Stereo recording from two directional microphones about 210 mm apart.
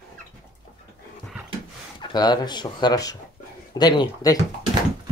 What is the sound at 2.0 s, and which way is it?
Speech, 20° left (ahead or behind).